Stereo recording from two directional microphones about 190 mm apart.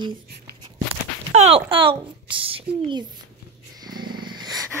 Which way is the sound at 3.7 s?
20° right (ahead or behind).